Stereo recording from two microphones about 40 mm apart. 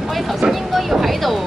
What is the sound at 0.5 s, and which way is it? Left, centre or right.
Speech, centre.